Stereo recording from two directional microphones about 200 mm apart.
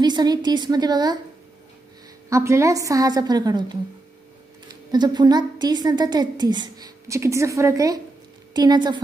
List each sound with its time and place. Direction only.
0.0 s a woman's voice: 20° right (ahead or behind)
2.2 s a woman's voice: 15° right (ahead or behind)
4.9 s a woman's voice: 20° right (ahead or behind)